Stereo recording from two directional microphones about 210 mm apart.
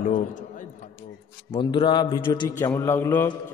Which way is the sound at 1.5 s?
25° left (ahead or behind).